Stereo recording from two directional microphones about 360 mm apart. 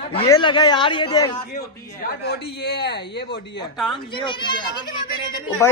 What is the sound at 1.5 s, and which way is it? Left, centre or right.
Speech, left.